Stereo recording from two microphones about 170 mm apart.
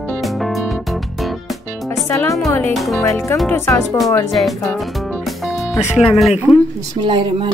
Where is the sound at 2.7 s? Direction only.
Centre (ahead or behind).